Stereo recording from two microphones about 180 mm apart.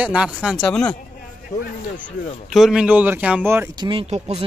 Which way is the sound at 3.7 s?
25° right (ahead or behind).